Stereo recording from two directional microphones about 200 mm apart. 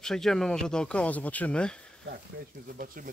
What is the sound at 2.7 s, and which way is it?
Speech, 45° right (ahead or behind).